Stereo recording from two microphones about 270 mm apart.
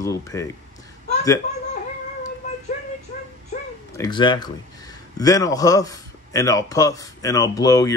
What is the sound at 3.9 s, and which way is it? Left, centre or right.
A man's voice, centre.